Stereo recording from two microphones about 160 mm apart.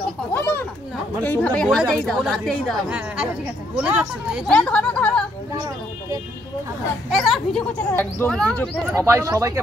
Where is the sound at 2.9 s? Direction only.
10° right (ahead or behind).